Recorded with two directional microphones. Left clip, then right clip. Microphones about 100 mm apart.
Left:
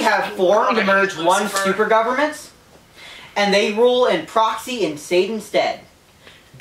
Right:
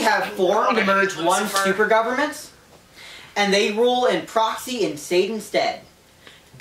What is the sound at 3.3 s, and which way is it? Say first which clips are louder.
Speech: left 2 dB; 15° right (ahead or behind).